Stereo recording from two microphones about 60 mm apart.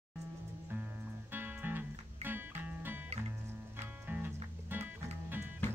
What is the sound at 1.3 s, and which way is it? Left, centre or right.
Music, right.